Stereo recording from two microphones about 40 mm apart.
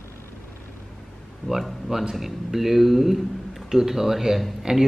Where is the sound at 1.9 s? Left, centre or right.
Centre.